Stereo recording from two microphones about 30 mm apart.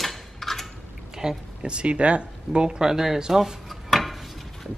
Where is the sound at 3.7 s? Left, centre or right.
Centre.